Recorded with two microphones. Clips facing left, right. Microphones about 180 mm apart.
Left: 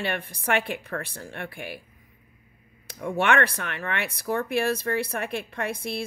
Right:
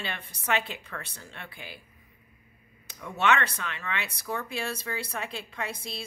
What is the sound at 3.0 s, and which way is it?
Speech, 50° left (ahead or behind).